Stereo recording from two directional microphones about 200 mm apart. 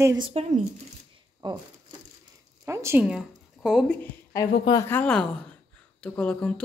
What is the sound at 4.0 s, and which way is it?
A woman's voice, 15° left (ahead or behind).